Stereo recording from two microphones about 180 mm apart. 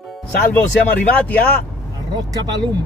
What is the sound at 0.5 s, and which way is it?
Speech, 5° left (ahead or behind).